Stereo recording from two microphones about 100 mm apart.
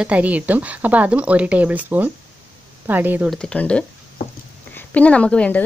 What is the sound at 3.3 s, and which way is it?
A woman's voice, 10° left (ahead or behind).